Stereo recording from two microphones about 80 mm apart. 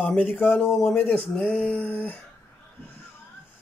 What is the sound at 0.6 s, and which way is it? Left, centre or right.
Speech, centre.